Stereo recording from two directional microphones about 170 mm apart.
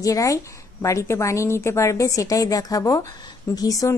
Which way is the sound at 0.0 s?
20° left (ahead or behind).